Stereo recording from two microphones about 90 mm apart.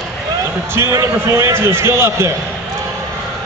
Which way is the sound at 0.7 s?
30° right (ahead or behind).